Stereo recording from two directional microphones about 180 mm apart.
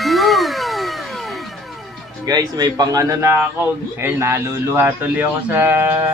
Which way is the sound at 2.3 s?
20° right (ahead or behind).